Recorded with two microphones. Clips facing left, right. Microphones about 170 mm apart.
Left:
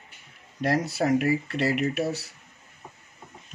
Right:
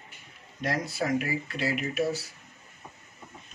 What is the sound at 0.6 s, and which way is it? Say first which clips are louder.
Speech: left 5 dB; 65° left (ahead or behind).